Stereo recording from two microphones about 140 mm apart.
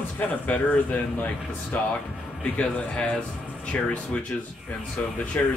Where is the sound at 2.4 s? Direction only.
10° left (ahead or behind).